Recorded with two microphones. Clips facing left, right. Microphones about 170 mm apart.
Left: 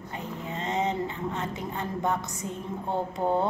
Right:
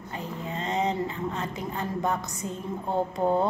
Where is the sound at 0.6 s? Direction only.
20° left (ahead or behind).